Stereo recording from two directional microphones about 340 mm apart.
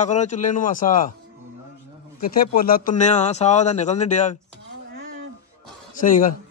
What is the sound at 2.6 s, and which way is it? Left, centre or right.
A man's voice, left.